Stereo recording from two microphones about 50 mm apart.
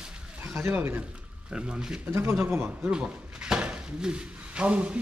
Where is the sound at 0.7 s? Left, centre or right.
Right.